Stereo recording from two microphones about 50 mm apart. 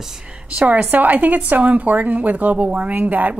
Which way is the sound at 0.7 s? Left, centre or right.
Right.